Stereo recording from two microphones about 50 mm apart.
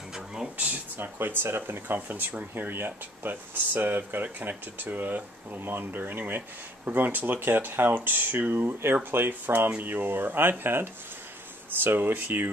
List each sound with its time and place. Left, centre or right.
0.9 s speech: right
5.6 s speech: right